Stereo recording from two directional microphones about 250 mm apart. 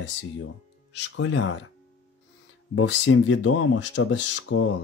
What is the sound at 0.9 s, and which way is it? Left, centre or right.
Speech, left.